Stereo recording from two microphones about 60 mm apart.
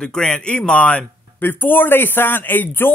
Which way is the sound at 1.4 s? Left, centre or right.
Left.